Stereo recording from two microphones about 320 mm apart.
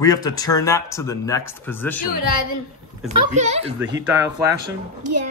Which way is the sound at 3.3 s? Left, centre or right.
Right.